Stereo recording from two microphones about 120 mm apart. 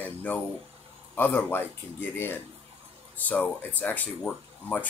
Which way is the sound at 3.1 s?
15° left (ahead or behind).